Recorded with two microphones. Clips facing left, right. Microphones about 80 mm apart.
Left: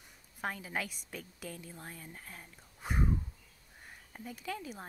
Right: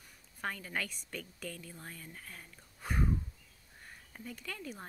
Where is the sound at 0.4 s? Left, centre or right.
Centre.